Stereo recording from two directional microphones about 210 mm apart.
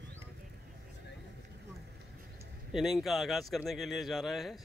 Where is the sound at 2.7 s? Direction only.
Centre (ahead or behind).